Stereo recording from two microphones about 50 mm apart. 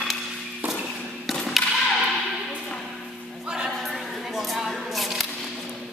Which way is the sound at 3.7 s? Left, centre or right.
Centre.